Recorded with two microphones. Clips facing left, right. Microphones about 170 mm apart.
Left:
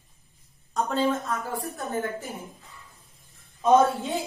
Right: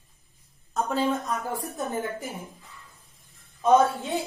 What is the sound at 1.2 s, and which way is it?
A woman's voice, 20° right (ahead or behind).